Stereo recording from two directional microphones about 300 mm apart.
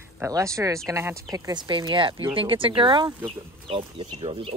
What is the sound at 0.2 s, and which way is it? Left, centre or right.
Speech, centre.